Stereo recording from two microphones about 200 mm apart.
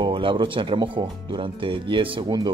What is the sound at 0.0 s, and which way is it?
Speech, 25° right (ahead or behind).